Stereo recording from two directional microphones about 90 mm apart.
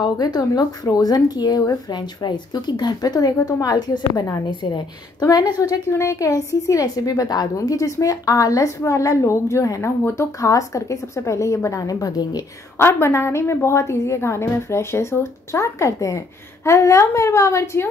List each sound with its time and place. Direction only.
0.0 s speech: 50° left (ahead or behind)
5.6 s a woman's voice: 35° left (ahead or behind)
12.7 s a woman's voice: 30° left (ahead or behind)